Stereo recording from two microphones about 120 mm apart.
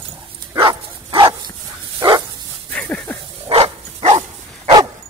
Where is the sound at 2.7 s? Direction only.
10° left (ahead or behind).